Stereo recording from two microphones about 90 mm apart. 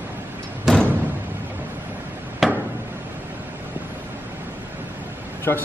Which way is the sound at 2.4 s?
Centre (ahead or behind).